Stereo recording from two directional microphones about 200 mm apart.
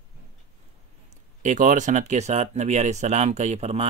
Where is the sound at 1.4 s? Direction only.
40° right (ahead or behind).